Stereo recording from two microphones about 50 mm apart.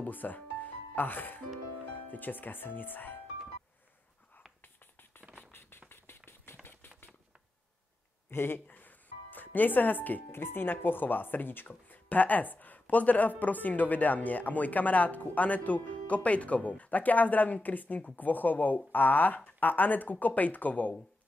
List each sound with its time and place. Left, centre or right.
0.0 s speech: left
5.4 s a sound: left
8.3 s music: left
10.3 s speech: left